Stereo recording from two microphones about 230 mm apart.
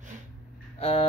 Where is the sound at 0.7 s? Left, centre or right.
Left.